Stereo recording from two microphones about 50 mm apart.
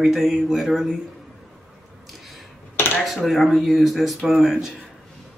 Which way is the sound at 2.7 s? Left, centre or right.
Left.